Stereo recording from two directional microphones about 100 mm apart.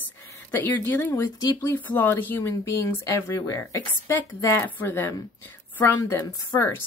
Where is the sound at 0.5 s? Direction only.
20° left (ahead or behind).